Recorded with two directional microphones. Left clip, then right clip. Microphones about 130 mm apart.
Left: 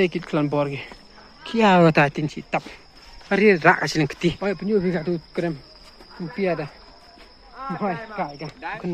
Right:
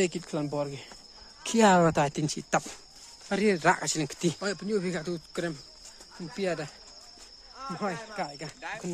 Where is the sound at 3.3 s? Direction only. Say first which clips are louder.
Left 10 dB; 20° right (ahead or behind).